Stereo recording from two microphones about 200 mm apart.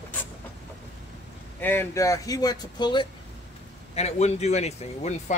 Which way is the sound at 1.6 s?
10° left (ahead or behind).